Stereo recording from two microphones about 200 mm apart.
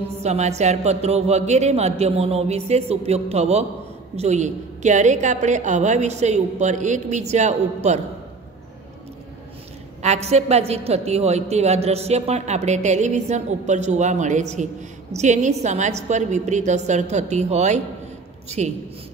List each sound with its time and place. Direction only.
0.2 s a woman's voice: 35° right (ahead or behind)
10.0 s a woman's voice: 35° right (ahead or behind)